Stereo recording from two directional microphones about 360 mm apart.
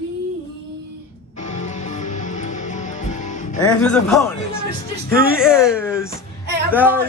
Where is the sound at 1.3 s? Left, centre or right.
Centre.